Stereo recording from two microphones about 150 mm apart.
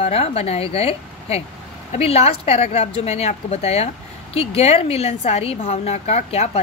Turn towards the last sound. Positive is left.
turn(degrees=45)  # may be behind; listen again after turning